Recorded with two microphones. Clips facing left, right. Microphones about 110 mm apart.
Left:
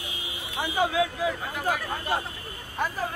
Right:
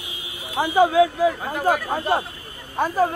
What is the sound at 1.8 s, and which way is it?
Speech, 60° right (ahead or behind).